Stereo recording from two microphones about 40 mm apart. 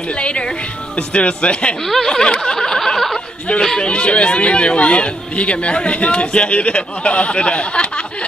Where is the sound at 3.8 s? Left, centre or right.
Left.